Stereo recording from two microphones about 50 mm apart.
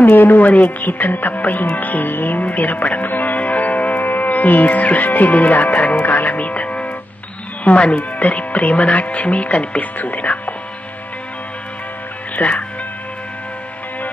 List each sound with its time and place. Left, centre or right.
0.0 s speech: left
12.4 s speech: left